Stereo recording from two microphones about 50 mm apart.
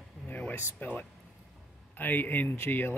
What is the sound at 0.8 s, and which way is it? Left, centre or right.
Speech, left.